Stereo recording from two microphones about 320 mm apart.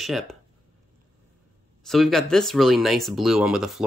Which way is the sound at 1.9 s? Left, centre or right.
Centre.